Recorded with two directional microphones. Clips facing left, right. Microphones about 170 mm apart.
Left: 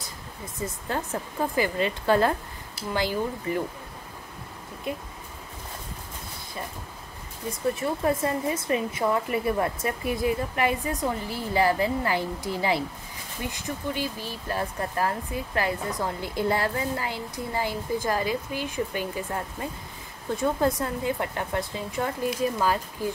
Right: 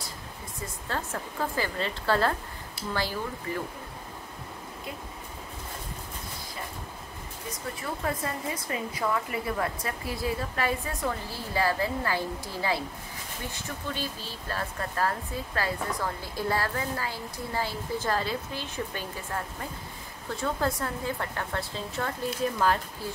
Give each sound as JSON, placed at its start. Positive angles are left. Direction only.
{"t": 0.6, "sound": "speech", "side_deg": 15}
{"t": 4.9, "sound": "speech", "side_deg": 25}
{"t": 7.8, "sound": "speech", "side_deg": 25}